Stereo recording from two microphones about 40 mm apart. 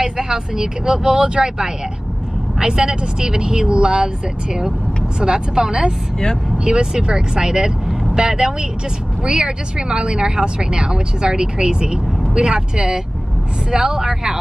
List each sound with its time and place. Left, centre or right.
0.0 s speech: centre
5.2 s speech: right